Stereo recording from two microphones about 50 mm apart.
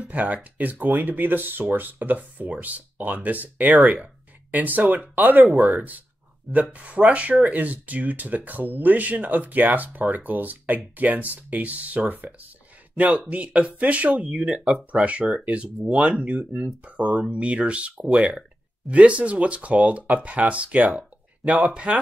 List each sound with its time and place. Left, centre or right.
0.0 s speech: right
14.3 s speech: centre